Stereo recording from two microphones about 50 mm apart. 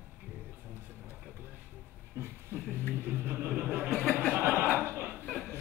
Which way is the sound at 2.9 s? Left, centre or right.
Right.